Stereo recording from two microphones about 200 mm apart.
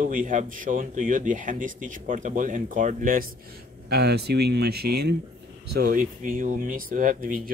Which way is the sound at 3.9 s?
55° right (ahead or behind).